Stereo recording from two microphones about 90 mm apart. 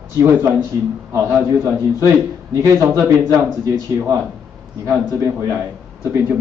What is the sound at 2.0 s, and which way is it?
A man's voice, 35° right (ahead or behind).